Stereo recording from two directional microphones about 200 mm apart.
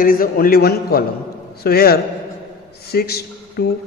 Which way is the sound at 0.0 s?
45° left (ahead or behind).